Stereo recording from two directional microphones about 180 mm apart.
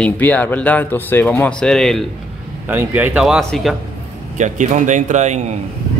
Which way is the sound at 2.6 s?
10° right (ahead or behind).